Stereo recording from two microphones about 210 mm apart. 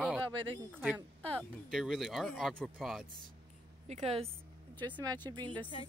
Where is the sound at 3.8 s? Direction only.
30° right (ahead or behind).